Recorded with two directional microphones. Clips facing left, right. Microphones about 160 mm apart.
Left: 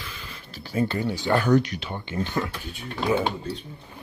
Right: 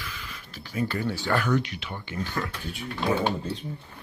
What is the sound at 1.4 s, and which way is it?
Speech, 40° left (ahead or behind).